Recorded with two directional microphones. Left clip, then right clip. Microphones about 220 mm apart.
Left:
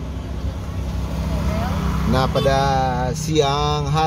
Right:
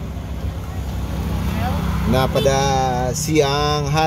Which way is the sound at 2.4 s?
20° right (ahead or behind).